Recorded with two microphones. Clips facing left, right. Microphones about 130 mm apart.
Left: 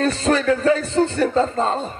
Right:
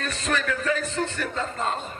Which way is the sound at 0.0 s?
35° left (ahead or behind).